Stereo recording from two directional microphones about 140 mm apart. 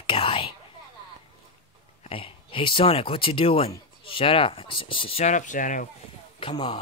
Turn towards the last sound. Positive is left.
turn(degrees=40)  # may be behind; listen again after turning